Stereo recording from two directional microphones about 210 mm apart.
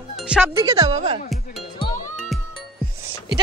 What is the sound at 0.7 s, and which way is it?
Speech, 30° right (ahead or behind).